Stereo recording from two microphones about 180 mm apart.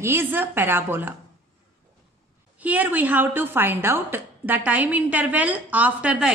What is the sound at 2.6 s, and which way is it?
A woman's voice, 10° right (ahead or behind).